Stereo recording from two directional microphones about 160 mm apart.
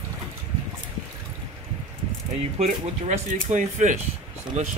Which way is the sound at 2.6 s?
45° right (ahead or behind).